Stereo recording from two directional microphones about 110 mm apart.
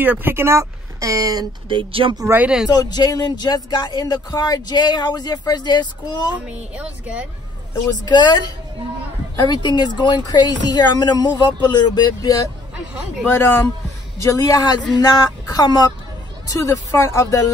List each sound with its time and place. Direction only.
0.0 s speech: 20° right (ahead or behind); by 1.5 s 35° right (ahead or behind)
1.7 s speech: 55° right (ahead or behind)
2.3 s speech: 10° right (ahead or behind)
2.7 s speech: 35° left (ahead or behind)
6.4 s speech: 10° right (ahead or behind)
8.0 s speech: 35° left (ahead or behind)
13.2 s speech: 20° left (ahead or behind); by 15.9 s 40° left (ahead or behind)
16.4 s speech: 30° left (ahead or behind)